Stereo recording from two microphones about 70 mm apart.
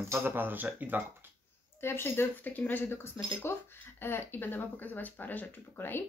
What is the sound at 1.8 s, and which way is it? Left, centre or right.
Speech, left.